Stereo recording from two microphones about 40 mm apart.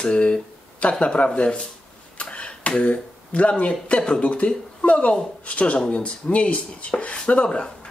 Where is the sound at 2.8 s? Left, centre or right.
Left.